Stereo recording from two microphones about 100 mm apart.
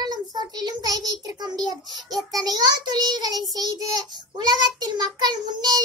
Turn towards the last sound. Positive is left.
turn(degrees=-45)  # may be behind; listen again after turning